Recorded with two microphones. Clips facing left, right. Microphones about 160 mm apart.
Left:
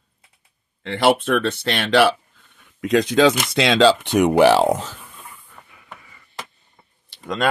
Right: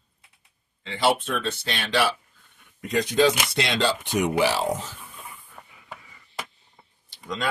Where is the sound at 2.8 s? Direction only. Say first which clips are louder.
Left 5 dB; 90° left; by 4.9 s 70° left (ahead or behind).